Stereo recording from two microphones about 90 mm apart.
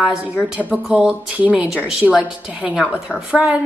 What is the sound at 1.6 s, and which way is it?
A woman's voice, 5° right (ahead or behind).